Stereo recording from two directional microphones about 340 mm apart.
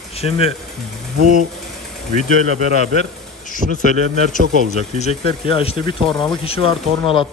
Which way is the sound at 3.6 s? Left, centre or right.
Centre.